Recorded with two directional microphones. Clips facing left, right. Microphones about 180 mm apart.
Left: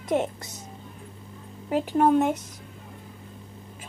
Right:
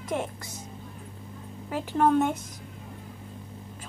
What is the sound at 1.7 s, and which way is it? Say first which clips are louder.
Speech: left 3 dB; 15° left (ahead or behind).